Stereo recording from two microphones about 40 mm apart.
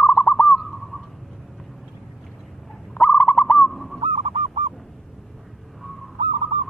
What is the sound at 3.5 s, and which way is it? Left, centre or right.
Owl, centre.